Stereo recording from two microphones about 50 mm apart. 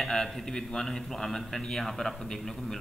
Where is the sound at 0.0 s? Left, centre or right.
Centre.